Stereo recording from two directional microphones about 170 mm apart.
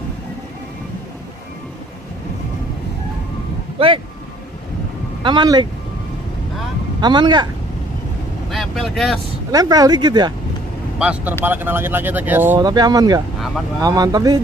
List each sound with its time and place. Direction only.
3.8 s speech: 30° right (ahead or behind)
5.2 s speech: 25° right (ahead or behind)
7.0 s speech: 25° right (ahead or behind)
8.5 s speech: centre (ahead or behind)
9.5 s speech: 20° right (ahead or behind)
11.0 s speech: 5° right (ahead or behind)
12.5 s speech: 25° right (ahead or behind)